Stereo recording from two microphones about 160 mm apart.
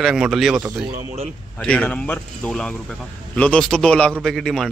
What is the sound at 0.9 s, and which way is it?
Speech, 40° right (ahead or behind).